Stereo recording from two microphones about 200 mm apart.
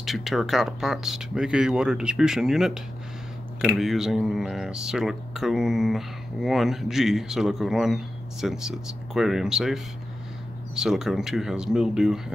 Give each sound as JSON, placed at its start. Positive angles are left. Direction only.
{"t": 0.0, "sound": "speech", "side_deg": 0}
{"t": 10.8, "sound": "speech", "side_deg": 0}